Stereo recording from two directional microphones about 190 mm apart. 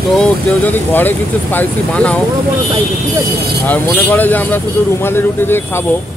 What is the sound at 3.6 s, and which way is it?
Speech, 10° left (ahead or behind).